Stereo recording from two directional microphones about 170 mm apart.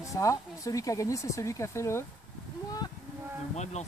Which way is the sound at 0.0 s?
20° left (ahead or behind).